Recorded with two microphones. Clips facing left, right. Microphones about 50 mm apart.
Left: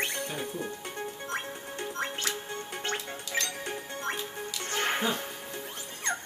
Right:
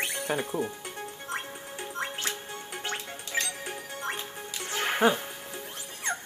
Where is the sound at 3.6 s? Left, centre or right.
Centre.